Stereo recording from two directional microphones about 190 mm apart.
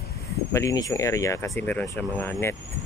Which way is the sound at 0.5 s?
15° left (ahead or behind).